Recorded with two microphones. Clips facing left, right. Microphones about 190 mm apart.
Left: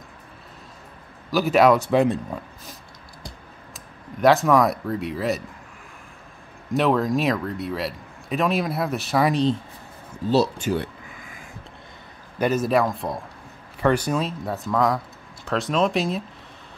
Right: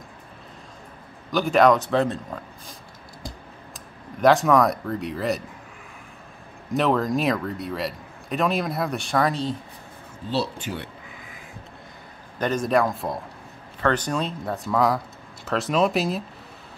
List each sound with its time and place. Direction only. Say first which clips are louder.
1.3 s speech: left 1 dB; 5° left (ahead or behind)
3.7 s speech: left 2 dB; centre (ahead or behind)
6.7 s speech: left 1 dB; centre (ahead or behind)
9.3 s speech: left 6 dB; 20° left (ahead or behind)
10.3 s speech: left 6 dB; 40° left (ahead or behind)
12.4 s speech: left 1 dB; 5° left (ahead or behind)
13.7 s speech: left 2 dB; 10° left (ahead or behind)